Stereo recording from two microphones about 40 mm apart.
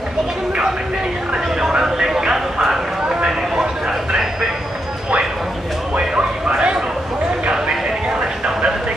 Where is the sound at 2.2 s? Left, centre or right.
Centre.